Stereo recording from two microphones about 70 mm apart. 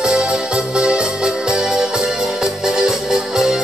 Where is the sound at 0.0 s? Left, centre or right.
Centre.